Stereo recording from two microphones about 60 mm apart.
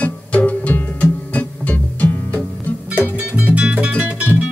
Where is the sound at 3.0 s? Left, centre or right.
Right.